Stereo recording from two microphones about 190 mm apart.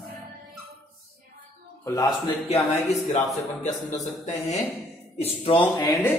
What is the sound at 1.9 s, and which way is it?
Speech, 20° left (ahead or behind).